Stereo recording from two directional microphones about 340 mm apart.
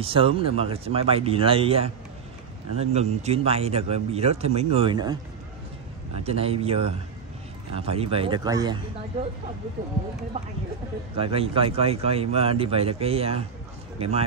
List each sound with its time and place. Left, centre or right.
0.0 s a man's voice: centre
6.2 s a man's voice: centre
11.1 s a man's voice: centre